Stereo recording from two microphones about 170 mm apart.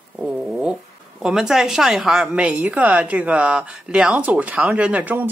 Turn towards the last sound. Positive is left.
turn(degrees=-10)  # may be behind; listen again after turning